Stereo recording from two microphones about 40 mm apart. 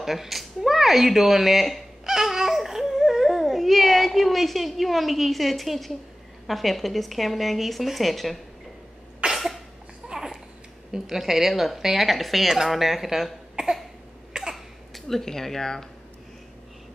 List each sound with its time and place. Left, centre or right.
0.0 s a woman's voice: centre
2.0 s babbling: centre
6.4 s a woman's voice: centre
9.3 s cough: centre
10.1 s babbling: centre
10.9 s a woman's voice: centre
14.3 s cough: centre
15.0 s speech: centre